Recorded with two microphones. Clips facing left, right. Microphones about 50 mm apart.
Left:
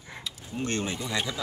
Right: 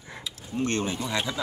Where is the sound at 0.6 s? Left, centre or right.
Right.